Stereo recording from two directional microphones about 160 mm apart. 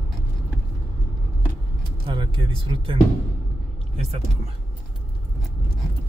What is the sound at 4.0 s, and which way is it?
Speech, 40° right (ahead or behind).